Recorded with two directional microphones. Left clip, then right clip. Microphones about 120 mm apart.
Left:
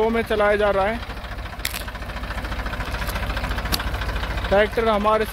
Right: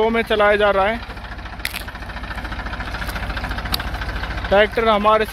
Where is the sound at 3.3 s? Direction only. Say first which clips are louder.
Right 2 dB; 75° left (ahead or behind).